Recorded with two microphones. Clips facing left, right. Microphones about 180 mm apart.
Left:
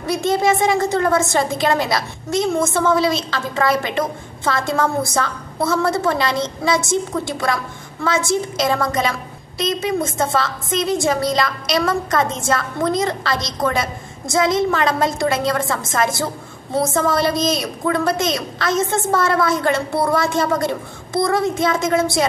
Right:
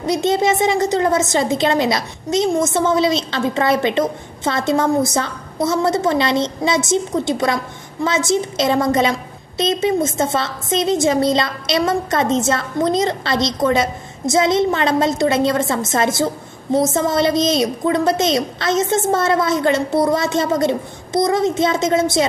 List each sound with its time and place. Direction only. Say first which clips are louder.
0.0 s a woman's voice: right 1 dB; 20° right (ahead or behind)